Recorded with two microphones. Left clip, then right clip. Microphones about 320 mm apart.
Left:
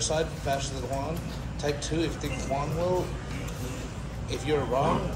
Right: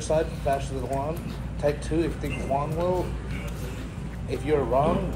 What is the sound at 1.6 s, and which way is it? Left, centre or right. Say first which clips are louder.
Speech: right 4 dB; right.